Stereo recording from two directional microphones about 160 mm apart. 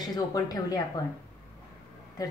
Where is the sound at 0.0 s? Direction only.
25° left (ahead or behind).